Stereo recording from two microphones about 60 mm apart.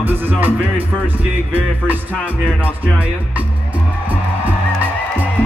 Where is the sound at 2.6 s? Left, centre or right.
Right.